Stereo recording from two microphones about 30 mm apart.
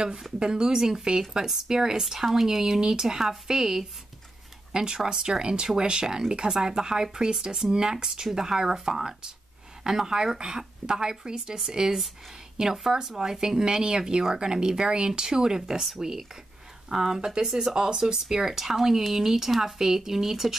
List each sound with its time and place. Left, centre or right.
0.4 s speech: right
5.4 s speech: right; by 20.5 s centre